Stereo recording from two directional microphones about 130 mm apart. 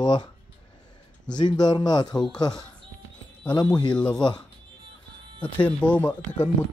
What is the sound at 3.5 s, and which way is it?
Speech, 5° left (ahead or behind).